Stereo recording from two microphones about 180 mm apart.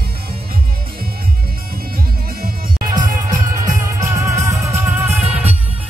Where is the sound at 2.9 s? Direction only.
20° right (ahead or behind).